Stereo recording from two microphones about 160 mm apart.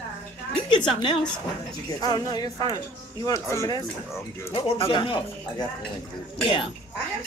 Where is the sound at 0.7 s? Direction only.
30° left (ahead or behind).